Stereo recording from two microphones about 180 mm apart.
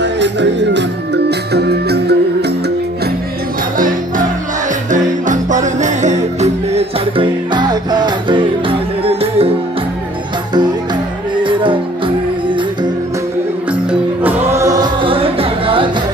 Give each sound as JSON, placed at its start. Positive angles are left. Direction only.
{"t": 0.0, "sound": "music", "side_deg": -75}
{"t": 4.9, "sound": "music", "side_deg": -45}
{"t": 11.4, "sound": "music", "side_deg": -30}
{"t": 14.2, "sound": "music", "side_deg": -15}